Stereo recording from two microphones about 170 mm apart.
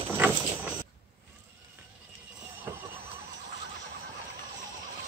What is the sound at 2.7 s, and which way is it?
Neigh, 15° right (ahead or behind).